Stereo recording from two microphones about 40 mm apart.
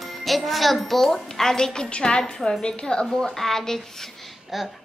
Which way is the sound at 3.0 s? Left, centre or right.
Centre.